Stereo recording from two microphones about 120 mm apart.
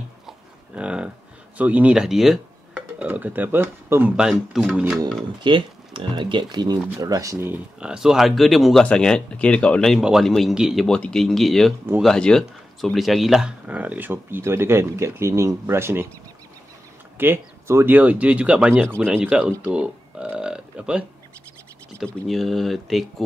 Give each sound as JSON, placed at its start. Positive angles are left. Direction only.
{"t": 0.3, "sound": "a sound", "side_deg": -10}
{"t": 1.6, "sound": "speech", "side_deg": -15}
{"t": 5.4, "sound": "speech", "side_deg": -40}
{"t": 7.8, "sound": "speech", "side_deg": -5}
{"t": 10.9, "sound": "speech", "side_deg": 5}
{"t": 17.2, "sound": "speech", "side_deg": -20}
{"t": 22.0, "sound": "speech", "side_deg": 0}